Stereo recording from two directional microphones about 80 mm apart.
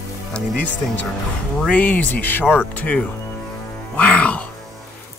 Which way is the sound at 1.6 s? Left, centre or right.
Centre.